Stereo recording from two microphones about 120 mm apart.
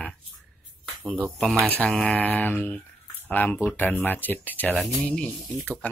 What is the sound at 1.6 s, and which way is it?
Speech, 10° left (ahead or behind).